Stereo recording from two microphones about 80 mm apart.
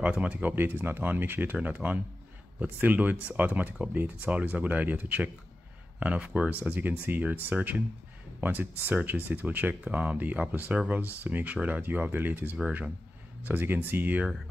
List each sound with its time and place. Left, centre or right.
0.0 s speech: centre
6.6 s speech: right